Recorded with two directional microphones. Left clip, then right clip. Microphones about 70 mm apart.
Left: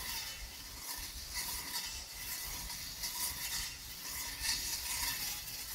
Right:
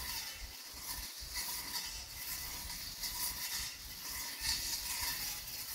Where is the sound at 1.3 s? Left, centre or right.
Right.